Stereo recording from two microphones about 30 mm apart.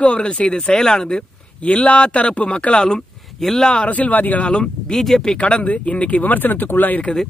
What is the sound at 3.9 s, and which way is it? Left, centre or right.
Speech, left.